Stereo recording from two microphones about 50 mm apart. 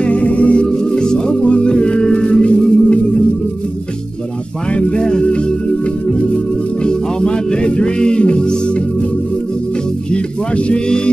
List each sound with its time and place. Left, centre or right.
0.0 s music: left
4.7 s music: centre
10.1 s speech: left